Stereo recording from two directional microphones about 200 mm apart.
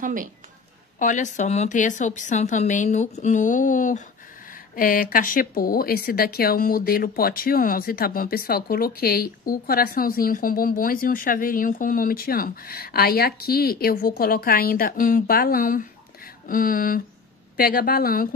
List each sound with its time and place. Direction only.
0.0 s speech: 40° right (ahead or behind)
0.9 s speech: 40° left (ahead or behind)